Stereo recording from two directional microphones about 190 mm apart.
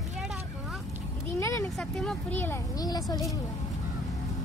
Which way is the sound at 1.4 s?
15° left (ahead or behind).